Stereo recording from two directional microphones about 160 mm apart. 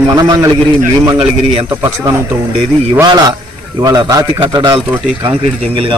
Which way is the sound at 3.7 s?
25° right (ahead or behind).